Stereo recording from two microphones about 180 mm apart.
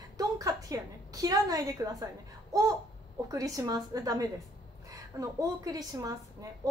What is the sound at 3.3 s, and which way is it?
A woman's voice, 20° right (ahead or behind).